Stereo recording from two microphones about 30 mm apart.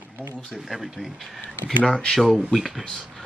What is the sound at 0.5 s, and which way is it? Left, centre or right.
Speech, centre.